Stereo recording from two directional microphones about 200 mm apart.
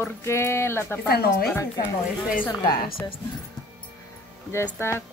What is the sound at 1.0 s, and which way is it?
Speech, 50° left (ahead or behind).